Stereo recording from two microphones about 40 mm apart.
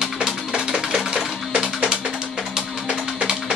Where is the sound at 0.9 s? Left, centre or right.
Centre.